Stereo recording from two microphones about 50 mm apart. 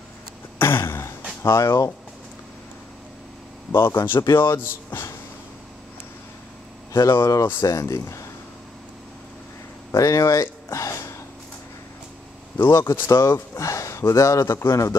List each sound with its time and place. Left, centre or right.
0.6 s a sound: left
1.4 s speech: left
3.7 s speech: left
6.9 s speech: left
9.8 s speech: left
12.6 s speech: left